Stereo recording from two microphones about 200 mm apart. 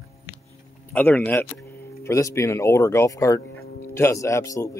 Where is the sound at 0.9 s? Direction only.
10° left (ahead or behind).